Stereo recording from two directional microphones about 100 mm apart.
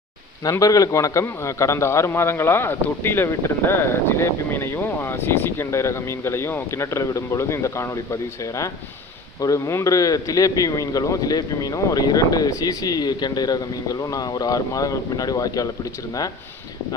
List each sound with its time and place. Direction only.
0.4 s a man's voice: 35° left (ahead or behind)